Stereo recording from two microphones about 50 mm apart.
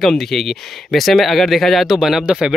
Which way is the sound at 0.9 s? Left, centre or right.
Centre.